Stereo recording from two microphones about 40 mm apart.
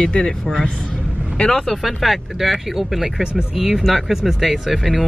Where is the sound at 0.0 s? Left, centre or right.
Left.